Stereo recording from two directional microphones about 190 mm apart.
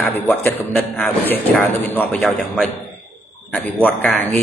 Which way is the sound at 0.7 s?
10° left (ahead or behind).